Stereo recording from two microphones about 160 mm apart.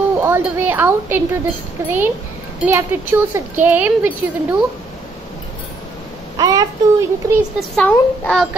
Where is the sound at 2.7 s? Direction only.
15° right (ahead or behind).